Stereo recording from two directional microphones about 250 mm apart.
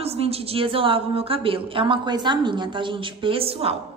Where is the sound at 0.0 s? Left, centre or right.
Right.